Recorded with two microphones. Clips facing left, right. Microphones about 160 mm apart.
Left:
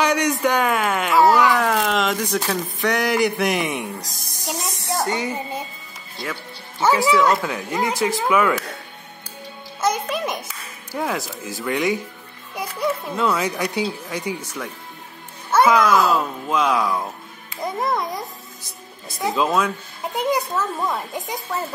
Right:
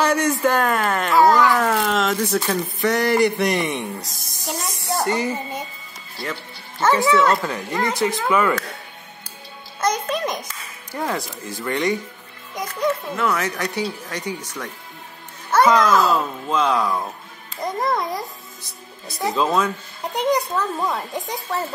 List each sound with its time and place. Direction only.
0.0 s a sound: 5° right (ahead or behind)
2.3 s a man's voice: centre (ahead or behind)
6.8 s a man's voice: 10° left (ahead or behind)
9.8 s a child's voice: 5° left (ahead or behind)